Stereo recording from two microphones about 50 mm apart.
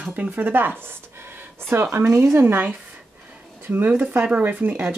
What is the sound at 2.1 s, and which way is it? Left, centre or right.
Speech, right.